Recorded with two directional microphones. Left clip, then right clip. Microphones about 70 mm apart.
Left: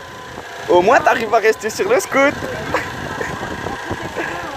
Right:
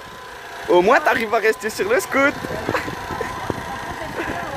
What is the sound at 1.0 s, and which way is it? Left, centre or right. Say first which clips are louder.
Speech: left 4 dB; right.